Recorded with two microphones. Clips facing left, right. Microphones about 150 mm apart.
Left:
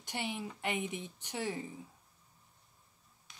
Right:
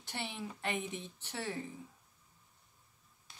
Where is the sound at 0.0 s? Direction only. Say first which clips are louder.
Left 3 dB; 15° left (ahead or behind).